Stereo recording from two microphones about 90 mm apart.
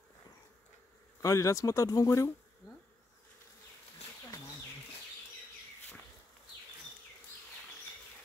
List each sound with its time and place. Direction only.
1.2 s speech: 35° left (ahead or behind)